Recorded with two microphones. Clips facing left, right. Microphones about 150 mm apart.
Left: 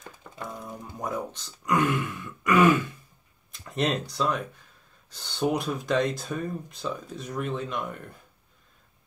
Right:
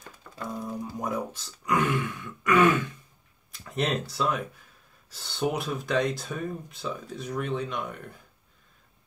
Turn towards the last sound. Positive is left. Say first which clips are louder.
# even
turn(degrees=0)  # may be behind; listen again after turning